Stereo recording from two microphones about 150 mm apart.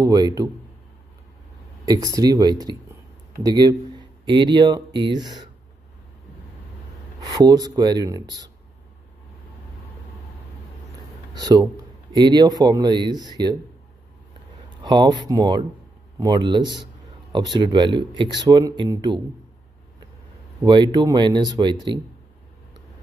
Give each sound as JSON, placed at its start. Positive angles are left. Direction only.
{"t": 0.0, "sound": "a man's voice", "side_deg": -25}
{"t": 1.9, "sound": "a man's voice", "side_deg": -25}
{"t": 7.2, "sound": "a man's voice", "side_deg": -25}
{"t": 11.3, "sound": "a man's voice", "side_deg": -25}
{"t": 14.8, "sound": "a man's voice", "side_deg": -30}
{"t": 20.6, "sound": "a man's voice", "side_deg": -30}